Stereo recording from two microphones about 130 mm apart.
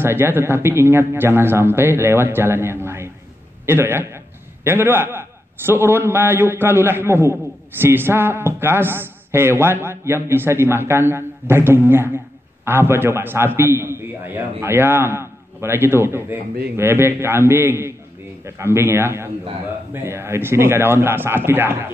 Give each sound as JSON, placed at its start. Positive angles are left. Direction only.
{"t": 0.0, "sound": "a man's voice", "side_deg": -15}